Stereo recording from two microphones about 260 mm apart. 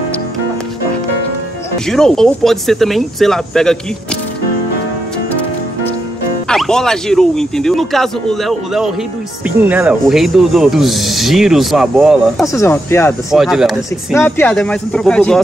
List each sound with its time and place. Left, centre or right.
1.9 s speech: centre
6.5 s speech: centre
12.5 s speech: centre
13.3 s speech: centre